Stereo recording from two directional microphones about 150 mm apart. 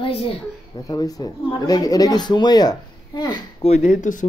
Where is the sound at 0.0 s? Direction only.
40° left (ahead or behind).